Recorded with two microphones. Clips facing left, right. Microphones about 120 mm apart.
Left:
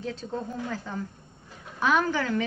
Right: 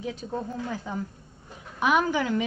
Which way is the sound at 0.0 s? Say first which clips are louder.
Right 1 dB; 15° right (ahead or behind).